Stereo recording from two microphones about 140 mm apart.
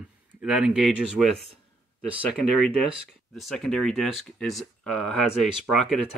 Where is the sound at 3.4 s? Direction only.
Centre (ahead or behind).